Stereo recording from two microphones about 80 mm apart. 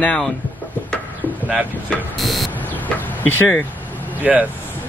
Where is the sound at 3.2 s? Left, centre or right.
Left.